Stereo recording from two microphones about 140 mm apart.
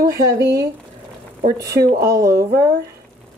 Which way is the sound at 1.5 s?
25° right (ahead or behind).